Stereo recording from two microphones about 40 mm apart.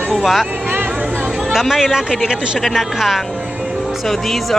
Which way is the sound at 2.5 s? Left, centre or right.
Centre.